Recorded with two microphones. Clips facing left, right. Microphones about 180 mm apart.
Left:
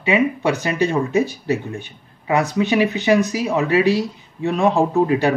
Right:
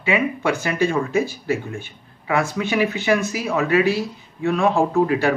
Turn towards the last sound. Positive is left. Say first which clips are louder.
# left 1 dB
turn(degrees=20)  # may be behind; listen again after turning